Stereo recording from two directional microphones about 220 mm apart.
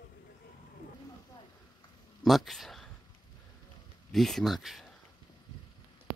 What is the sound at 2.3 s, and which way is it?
Speech, centre (ahead or behind).